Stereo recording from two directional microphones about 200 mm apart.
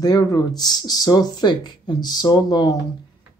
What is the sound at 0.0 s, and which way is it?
Speech, 20° left (ahead or behind).